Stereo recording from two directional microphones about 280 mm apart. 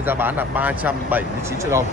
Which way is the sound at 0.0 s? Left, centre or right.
Centre.